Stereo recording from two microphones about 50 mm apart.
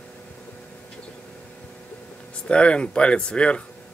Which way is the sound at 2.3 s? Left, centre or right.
Left.